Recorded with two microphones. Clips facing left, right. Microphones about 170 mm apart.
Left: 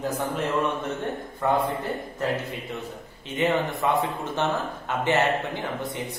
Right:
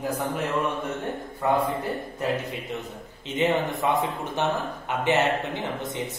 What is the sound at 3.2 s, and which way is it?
Speech, 15° right (ahead or behind).